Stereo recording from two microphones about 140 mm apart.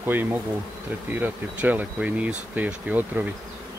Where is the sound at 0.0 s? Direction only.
15° right (ahead or behind).